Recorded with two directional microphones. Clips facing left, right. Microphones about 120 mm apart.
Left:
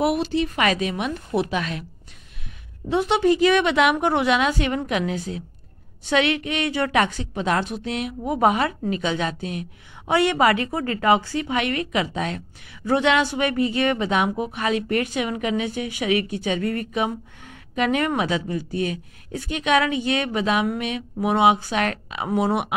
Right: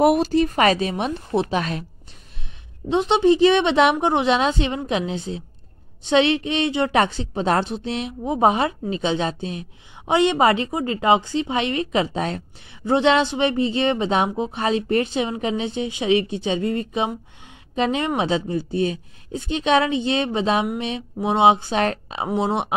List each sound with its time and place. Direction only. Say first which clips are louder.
0.0 s a woman's voice: right 5 dB; 45° right (ahead or behind)
2.9 s a woman's voice: right 2 dB; 20° right (ahead or behind)